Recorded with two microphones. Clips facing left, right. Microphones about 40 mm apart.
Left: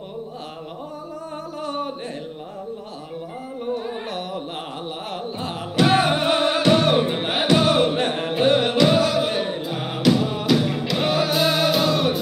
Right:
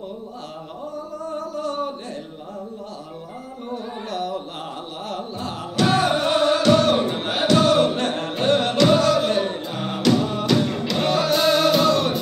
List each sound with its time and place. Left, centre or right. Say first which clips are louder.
1.3 s music: right 2 dB; centre
3.6 s carnatic music: left 3 dB; centre
5.1 s music: right 1 dB; centre